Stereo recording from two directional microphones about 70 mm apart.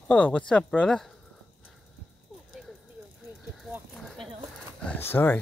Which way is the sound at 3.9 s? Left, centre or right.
Centre.